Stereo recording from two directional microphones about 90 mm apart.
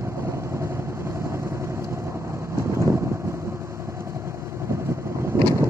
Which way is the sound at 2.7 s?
30° right (ahead or behind).